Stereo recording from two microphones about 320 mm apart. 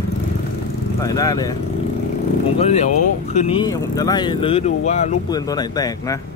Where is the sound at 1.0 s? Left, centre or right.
Centre.